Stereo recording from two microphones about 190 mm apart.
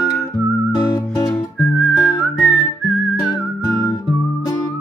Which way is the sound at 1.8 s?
5° left (ahead or behind).